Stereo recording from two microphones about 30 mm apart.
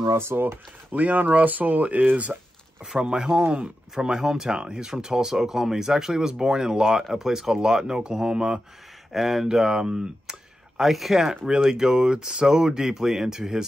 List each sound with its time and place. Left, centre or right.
0.9 s speech: right
2.8 s speech: right
9.1 s speech: centre
9.5 s speech: right
10.8 s speech: centre
11.1 s speech: centre